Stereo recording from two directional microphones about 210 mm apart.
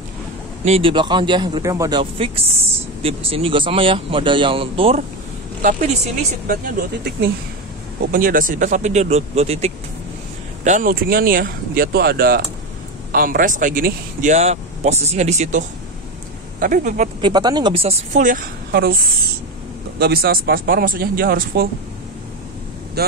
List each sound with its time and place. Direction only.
0.7 s a man's voice: 25° right (ahead or behind)
5.6 s a woman's voice: 35° right (ahead or behind)
8.1 s speech: 40° right (ahead or behind)
17.2 s a man's voice: 20° right (ahead or behind); by 18.9 s 45° right (ahead or behind)
20.0 s speech: 45° right (ahead or behind)
23.0 s speech: 50° right (ahead or behind)